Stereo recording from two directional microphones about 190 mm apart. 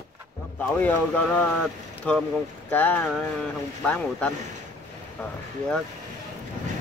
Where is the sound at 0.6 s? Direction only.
10° left (ahead or behind).